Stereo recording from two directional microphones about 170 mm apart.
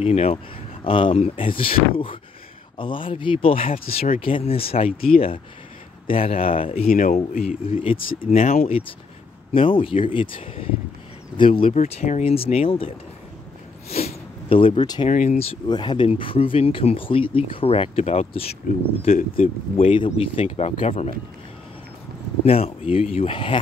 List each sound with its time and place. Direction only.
0.0 s speech: 35° left (ahead or behind)
6.9 s speech: 55° left (ahead or behind)
7.4 s speech: 35° left (ahead or behind)
8.3 s speech: 45° left (ahead or behind)
11.8 s speech: 45° left (ahead or behind); by 15.0 s 25° left (ahead or behind)
15.0 s speech: 45° left (ahead or behind)
22.5 s speech: 35° left (ahead or behind)